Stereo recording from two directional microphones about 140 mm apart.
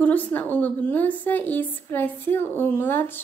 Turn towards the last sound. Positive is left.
turn(degrees=15)  # may be behind; listen again after turning